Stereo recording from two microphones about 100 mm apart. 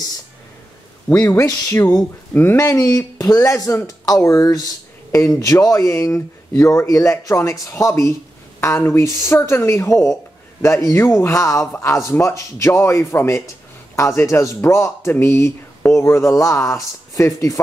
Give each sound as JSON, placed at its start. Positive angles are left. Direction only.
{"t": 1.1, "sound": "speech", "side_deg": 30}